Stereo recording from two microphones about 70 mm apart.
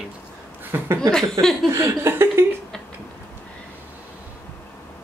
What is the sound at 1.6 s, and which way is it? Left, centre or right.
Speech, right.